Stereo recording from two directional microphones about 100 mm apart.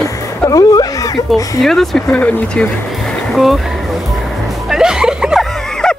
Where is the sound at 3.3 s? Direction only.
Centre (ahead or behind).